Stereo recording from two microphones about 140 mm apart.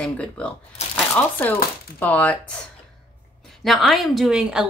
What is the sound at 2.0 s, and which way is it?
Speech, 10° left (ahead or behind).